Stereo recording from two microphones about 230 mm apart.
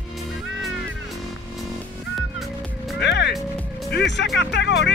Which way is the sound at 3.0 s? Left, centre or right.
Left.